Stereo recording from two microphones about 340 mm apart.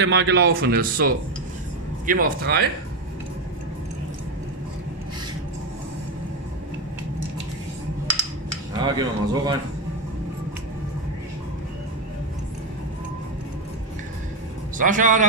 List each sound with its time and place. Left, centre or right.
0.0 s speech: right
8.8 s speech: centre
14.8 s speech: right